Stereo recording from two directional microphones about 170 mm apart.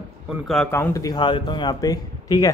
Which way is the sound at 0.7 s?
15° left (ahead or behind).